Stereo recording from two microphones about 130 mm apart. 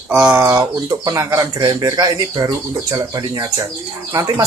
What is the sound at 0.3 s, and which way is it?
Speech, 25° right (ahead or behind).